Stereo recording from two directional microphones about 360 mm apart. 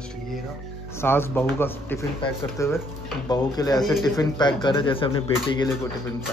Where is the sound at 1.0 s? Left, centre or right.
Centre.